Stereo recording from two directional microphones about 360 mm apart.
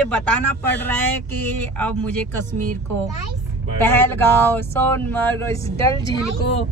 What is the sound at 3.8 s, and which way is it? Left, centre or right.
Speech, centre.